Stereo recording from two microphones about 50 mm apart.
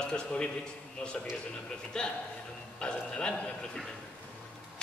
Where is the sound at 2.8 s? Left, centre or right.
Centre.